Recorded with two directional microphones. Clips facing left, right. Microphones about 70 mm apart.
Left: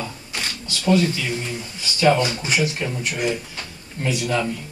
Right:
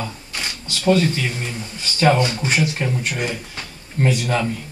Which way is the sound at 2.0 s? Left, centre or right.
Right.